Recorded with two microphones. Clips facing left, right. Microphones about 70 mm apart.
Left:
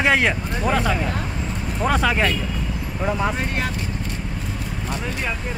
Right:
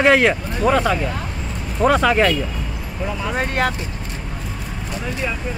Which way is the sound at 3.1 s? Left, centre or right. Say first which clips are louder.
Left 4 dB; left.